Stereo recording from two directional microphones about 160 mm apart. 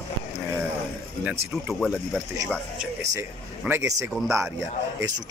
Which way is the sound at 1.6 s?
5° right (ahead or behind).